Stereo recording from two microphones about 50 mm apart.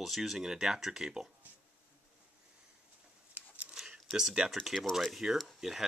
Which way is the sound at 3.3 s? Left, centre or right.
Right.